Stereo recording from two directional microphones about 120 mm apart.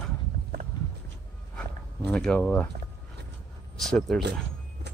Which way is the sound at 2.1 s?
10° left (ahead or behind).